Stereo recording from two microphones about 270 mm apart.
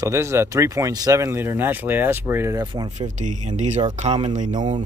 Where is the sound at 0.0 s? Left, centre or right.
Centre; by 4.7 s right.